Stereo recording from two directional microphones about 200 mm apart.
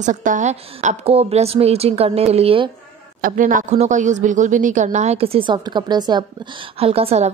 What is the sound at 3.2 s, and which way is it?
A woman's voice, 45° right (ahead or behind).